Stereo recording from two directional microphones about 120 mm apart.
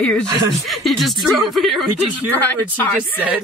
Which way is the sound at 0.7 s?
Centre (ahead or behind).